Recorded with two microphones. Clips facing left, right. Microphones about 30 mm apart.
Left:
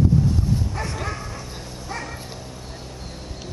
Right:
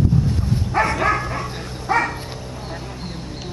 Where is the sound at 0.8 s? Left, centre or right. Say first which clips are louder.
Right 11 dB; right.